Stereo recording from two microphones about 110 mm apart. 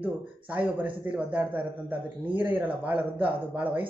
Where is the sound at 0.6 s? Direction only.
15° right (ahead or behind).